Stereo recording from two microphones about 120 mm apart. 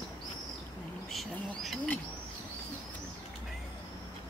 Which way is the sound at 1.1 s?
Centre (ahead or behind).